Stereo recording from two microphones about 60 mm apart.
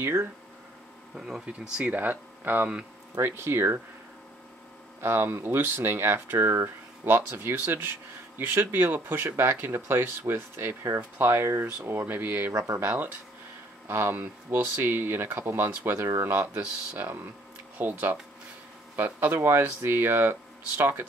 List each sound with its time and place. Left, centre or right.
0.0 s speech: right
1.1 s speech: centre
2.0 s speech: right
3.2 s speech: right
5.0 s speech: right
13.8 s speech: right
16.5 s speech: right